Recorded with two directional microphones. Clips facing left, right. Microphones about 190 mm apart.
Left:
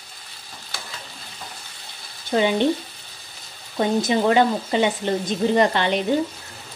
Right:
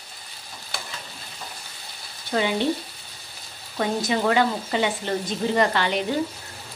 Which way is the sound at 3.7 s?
25° left (ahead or behind).